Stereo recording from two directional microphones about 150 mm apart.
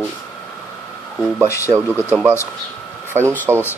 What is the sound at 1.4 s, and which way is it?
Speech, 20° left (ahead or behind).